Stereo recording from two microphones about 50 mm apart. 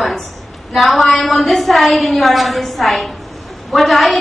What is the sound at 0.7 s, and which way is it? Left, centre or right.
A woman's voice, centre.